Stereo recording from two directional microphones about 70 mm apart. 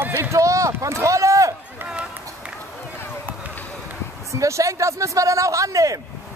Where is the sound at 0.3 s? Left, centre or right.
Right.